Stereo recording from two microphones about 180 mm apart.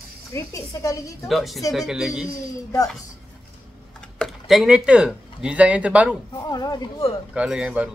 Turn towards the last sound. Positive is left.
turn(degrees=-5)  # may be behind; listen again after turning